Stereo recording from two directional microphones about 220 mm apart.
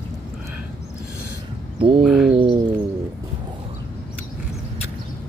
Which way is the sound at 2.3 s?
20° right (ahead or behind).